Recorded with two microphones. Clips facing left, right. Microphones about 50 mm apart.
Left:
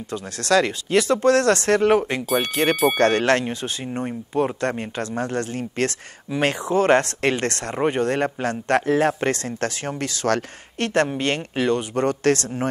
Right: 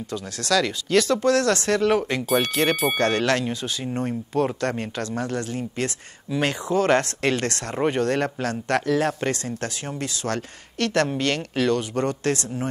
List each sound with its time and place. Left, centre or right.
0.1 s speech: left
1.2 s speech: left
2.2 s speech: centre
3.0 s speech: left
3.8 s speech: centre
4.7 s speech: left
7.7 s speech: centre
8.0 s speech: left
10.8 s speech: left
12.1 s speech: left